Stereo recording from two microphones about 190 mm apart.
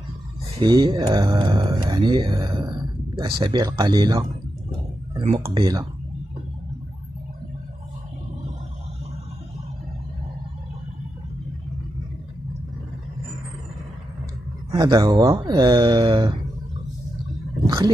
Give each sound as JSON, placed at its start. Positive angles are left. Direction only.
{"t": 0.6, "sound": "speech", "side_deg": -20}
{"t": 5.5, "sound": "speech", "side_deg": -20}
{"t": 14.7, "sound": "speech", "side_deg": -20}
{"t": 17.6, "sound": "speech", "side_deg": -20}